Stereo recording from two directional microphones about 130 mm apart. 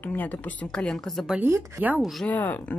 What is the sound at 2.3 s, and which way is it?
Speech, 10° left (ahead or behind).